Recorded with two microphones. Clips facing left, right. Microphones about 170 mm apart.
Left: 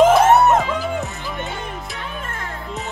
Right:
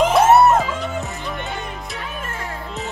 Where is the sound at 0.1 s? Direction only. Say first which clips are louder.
Even; centre (ahead or behind).